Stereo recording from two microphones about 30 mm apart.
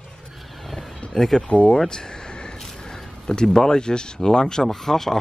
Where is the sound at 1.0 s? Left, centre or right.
Left.